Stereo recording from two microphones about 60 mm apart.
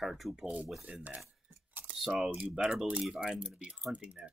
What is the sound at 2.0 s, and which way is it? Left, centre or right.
Speech, centre.